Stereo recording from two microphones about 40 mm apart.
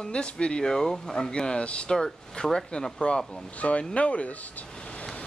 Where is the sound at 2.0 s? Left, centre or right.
Centre.